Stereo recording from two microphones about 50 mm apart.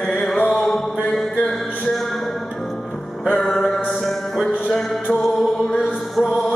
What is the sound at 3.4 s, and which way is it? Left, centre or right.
Music, centre.